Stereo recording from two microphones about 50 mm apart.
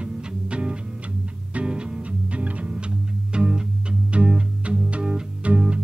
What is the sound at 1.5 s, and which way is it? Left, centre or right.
Music, centre.